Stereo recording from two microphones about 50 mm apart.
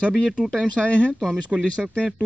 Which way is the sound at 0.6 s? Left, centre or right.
Left.